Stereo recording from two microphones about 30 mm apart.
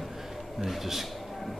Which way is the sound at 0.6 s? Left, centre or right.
Centre.